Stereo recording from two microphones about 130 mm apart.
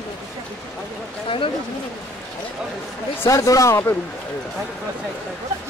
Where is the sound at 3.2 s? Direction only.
25° left (ahead or behind).